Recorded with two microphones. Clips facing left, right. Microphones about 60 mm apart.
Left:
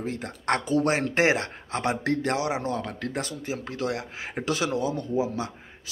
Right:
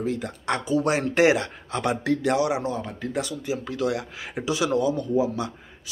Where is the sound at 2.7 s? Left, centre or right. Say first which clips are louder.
Even; left.